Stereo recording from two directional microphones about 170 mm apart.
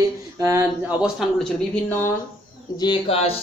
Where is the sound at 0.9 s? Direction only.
5° right (ahead or behind).